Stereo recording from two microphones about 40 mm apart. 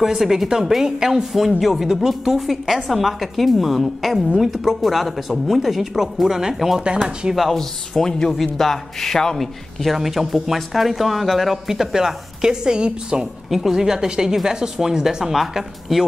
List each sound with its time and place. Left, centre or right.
0.0 s speech: centre
7.5 s a man's voice: centre
9.8 s speech: centre; by 13.3 s right
13.5 s speech: centre